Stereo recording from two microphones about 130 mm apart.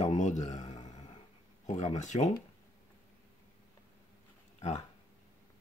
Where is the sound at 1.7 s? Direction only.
65° left (ahead or behind).